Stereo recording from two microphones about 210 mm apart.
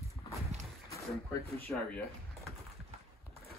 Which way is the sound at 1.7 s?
5° left (ahead or behind).